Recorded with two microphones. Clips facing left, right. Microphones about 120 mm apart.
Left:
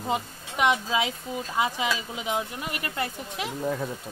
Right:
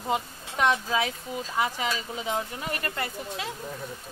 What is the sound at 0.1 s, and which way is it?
Speech, 15° left (ahead or behind).